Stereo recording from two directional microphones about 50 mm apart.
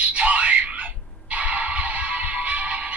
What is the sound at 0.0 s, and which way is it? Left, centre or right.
Music, right.